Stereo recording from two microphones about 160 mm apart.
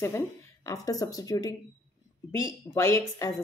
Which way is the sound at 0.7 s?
20° left (ahead or behind).